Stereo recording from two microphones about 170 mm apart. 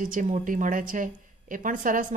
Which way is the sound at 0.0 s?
50° right (ahead or behind).